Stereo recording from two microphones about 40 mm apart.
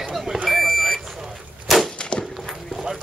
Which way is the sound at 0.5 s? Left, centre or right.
Centre.